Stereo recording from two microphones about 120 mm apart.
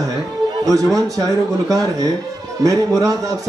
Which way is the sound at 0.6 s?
30° right (ahead or behind).